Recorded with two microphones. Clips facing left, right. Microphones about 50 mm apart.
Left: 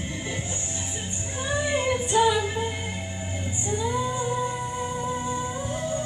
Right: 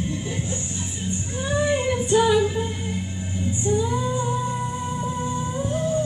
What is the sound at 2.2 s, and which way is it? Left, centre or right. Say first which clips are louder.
Music: right 1 dB; left.